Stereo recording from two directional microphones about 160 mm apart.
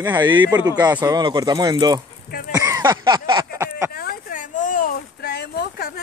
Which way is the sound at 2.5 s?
20° right (ahead or behind).